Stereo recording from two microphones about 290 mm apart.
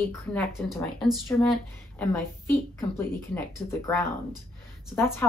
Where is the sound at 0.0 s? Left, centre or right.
Centre.